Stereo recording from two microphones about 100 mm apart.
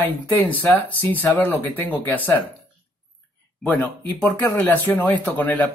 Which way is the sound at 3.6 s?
15° left (ahead or behind).